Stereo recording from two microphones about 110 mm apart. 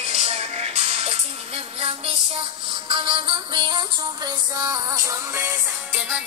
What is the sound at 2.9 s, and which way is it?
Music, 50° right (ahead or behind).